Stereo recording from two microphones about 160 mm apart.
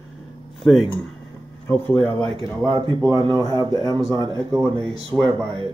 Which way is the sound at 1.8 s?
30° right (ahead or behind).